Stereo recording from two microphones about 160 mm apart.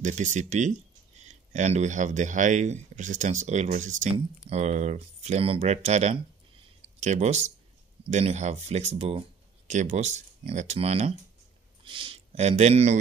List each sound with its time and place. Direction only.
0.0 s speech: 50° right (ahead or behind)